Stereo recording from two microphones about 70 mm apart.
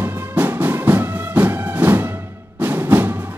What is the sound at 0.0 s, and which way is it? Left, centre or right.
Music, right.